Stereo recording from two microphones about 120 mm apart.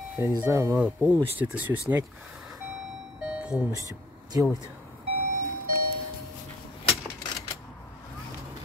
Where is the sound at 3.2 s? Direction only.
5° right (ahead or behind).